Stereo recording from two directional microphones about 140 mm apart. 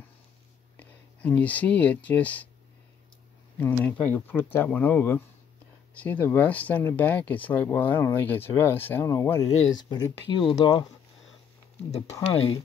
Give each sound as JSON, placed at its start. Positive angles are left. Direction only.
{"t": 0.7, "sound": "speech", "side_deg": 10}
{"t": 3.5, "sound": "speech", "side_deg": 15}